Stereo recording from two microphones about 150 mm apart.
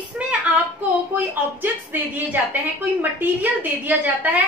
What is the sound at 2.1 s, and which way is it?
A woman's voice, 10° right (ahead or behind).